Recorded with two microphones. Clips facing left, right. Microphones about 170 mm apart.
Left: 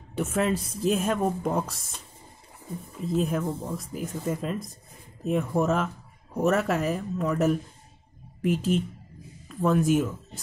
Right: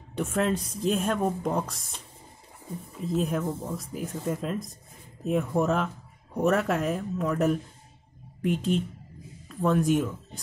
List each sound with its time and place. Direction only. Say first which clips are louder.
0.1 s speech: left 1 dB; 5° left (ahead or behind)
3.0 s speech: left 1 dB; centre (ahead or behind)